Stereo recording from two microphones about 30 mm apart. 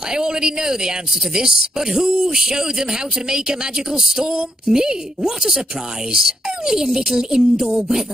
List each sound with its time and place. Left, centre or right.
0.1 s speech: right